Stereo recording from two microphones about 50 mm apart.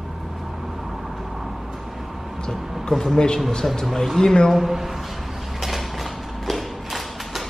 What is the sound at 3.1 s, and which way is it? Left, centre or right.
Speech, centre.